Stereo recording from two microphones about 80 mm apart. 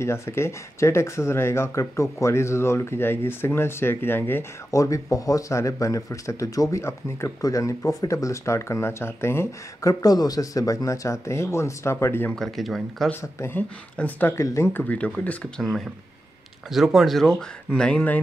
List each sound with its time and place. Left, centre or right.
0.0 s speech: left
4.6 s a man's voice: left
6.8 s speech: left
10.0 s speech: left
12.3 s speech: centre
13.2 s speech: left
13.6 s speech: left
14.3 s speech: left
14.7 s speech: centre
15.6 s speech: centre